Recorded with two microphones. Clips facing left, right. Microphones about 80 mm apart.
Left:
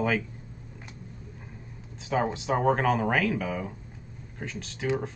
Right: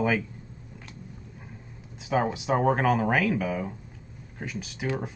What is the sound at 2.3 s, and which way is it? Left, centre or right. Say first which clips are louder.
Speech: right 1 dB; centre.